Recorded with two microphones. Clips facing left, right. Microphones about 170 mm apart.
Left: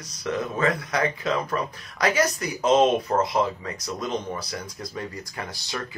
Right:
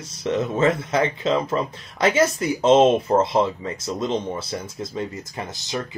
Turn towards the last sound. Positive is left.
turn(degrees=-20)  # may be behind; listen again after turning